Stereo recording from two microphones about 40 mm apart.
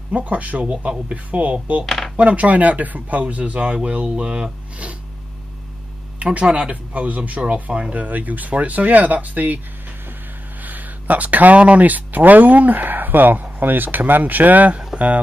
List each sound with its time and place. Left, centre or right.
0.1 s speech: right
1.9 s a sound: centre
2.1 s speech: right
6.1 s a sound: right
6.4 s speech: right
10.6 s speech: right